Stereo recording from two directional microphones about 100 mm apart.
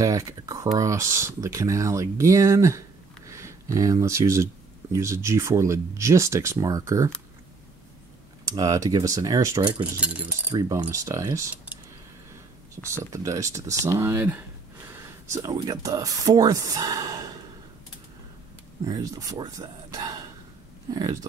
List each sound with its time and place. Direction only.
0.0 s speech: 35° right (ahead or behind)
8.5 s speech: 40° right (ahead or behind)
9.6 s cutlery: 50° right (ahead or behind)
10.5 s speech: 40° right (ahead or behind)
12.9 s speech: 30° right (ahead or behind)
18.9 s speech: 35° right (ahead or behind)